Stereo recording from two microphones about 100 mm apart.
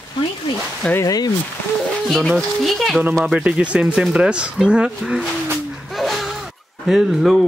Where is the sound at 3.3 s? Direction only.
10° right (ahead or behind).